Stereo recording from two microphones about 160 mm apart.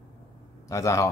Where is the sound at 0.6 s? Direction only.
20° left (ahead or behind).